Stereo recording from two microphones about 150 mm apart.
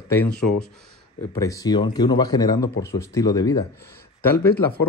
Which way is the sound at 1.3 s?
20° left (ahead or behind).